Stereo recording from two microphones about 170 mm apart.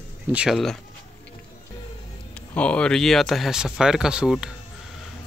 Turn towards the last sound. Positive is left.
turn(degrees=-5)  # may be behind; listen again after turning